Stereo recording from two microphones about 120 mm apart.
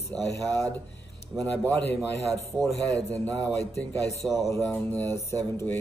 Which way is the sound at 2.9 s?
10° left (ahead or behind).